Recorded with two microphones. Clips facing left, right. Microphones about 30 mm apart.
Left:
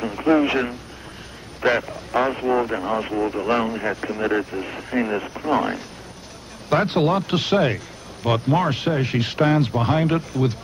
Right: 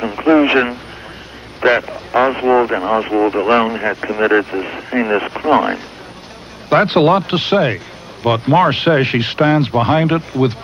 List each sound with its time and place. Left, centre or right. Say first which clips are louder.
0.0 s speech: right 6 dB; right
4.2 s speech: right 10 dB; right
4.6 s speech: right 5 dB; right
5.1 s speech: right 8 dB; right
6.9 s speech: right 8 dB; right
9.2 s speech: right 5 dB; right